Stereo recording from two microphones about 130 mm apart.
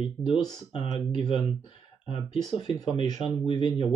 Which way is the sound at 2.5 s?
30° left (ahead or behind).